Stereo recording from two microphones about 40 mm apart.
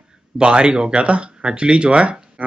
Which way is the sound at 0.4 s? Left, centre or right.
Right.